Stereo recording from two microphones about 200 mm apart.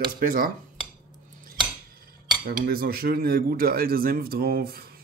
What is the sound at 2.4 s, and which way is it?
A man's voice, 50° right (ahead or behind).